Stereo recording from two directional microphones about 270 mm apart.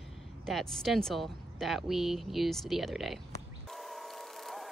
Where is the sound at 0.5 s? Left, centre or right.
Centre.